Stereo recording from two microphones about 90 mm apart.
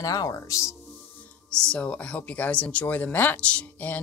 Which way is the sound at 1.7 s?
15° left (ahead or behind).